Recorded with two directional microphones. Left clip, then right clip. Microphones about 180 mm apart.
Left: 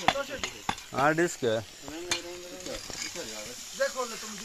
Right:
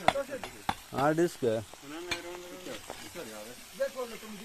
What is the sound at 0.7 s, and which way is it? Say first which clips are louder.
Speech: left 3 dB; 15° right (ahead or behind).